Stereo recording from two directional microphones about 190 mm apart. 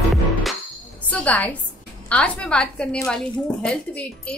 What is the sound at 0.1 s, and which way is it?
Music, centre (ahead or behind).